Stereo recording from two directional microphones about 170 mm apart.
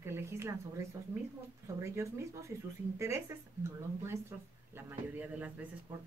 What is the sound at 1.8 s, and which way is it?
Speech, 15° right (ahead or behind).